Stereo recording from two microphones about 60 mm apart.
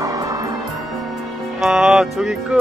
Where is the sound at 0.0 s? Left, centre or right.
Right.